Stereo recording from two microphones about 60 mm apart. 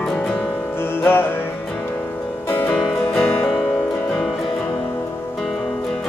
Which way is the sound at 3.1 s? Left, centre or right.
Left.